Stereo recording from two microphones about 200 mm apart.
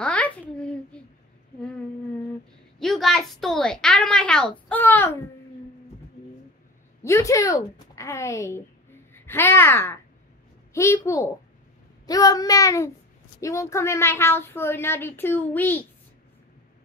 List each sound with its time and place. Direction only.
0.0 s a sound: 5° left (ahead or behind)
2.8 s a woman's voice: centre (ahead or behind)
7.0 s a woman's voice: 15° left (ahead or behind)